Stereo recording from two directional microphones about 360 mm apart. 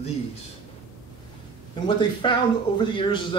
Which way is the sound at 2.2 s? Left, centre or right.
Centre.